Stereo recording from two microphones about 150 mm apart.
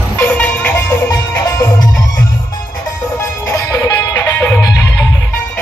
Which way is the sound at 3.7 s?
25° left (ahead or behind).